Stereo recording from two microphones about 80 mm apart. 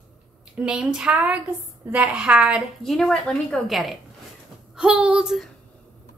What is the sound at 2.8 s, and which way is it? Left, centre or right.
A woman's voice, centre.